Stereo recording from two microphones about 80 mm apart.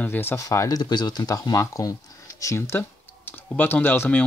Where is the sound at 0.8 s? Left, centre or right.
Left.